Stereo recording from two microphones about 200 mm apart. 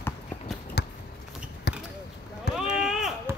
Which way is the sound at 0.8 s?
55° left (ahead or behind).